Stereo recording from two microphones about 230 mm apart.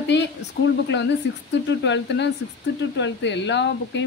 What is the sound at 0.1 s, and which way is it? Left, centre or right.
A woman's voice, left.